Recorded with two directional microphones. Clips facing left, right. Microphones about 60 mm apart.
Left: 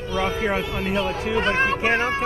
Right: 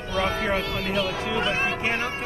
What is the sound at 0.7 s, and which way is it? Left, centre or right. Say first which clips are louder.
Speech: left 2 dB; left.